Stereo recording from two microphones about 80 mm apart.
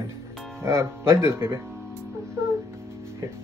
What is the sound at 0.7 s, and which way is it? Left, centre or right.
Speech, right.